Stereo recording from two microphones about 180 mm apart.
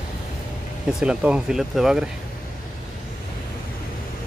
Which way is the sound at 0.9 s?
5° right (ahead or behind).